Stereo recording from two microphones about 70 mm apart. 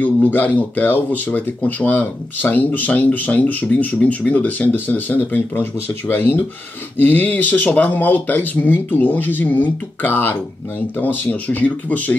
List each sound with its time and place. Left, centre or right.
0.0 s speech: left